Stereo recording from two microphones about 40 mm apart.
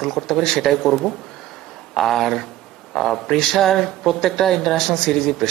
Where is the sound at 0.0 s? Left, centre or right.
Centre.